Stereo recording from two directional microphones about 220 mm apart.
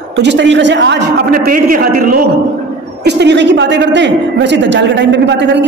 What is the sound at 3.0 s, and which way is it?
A man's voice, 50° right (ahead or behind).